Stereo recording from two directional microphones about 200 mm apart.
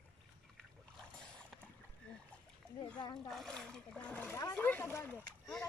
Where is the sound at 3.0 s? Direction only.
20° left (ahead or behind).